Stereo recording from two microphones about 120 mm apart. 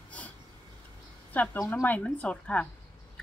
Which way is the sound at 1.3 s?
15° left (ahead or behind).